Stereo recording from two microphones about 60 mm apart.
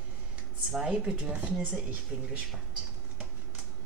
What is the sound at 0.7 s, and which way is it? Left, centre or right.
Speech, centre.